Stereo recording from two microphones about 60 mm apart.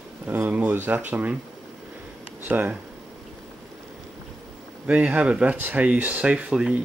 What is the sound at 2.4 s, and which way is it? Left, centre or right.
Speech, right.